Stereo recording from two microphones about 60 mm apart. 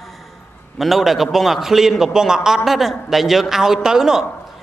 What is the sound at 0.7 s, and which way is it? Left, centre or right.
A man's voice, centre.